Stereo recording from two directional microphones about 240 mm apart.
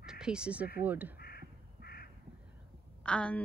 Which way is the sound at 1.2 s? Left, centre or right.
Left.